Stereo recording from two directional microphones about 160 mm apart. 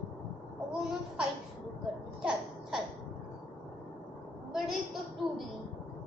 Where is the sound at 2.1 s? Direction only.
5° right (ahead or behind).